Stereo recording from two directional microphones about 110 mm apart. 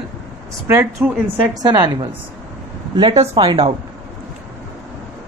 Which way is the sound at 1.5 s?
40° right (ahead or behind).